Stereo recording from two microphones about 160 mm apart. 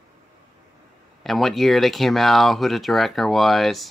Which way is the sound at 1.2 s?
Centre (ahead or behind).